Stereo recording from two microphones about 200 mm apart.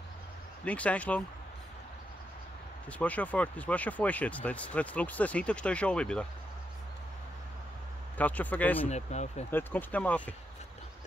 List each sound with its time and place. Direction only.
0.7 s speech: 5° left (ahead or behind)
2.9 s speech: 5° left (ahead or behind)
8.2 s speech: 10° left (ahead or behind)
8.7 s speech: 35° left (ahead or behind)
9.5 s speech: 10° left (ahead or behind)